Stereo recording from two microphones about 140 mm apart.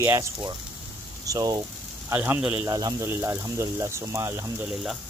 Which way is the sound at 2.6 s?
30° right (ahead or behind).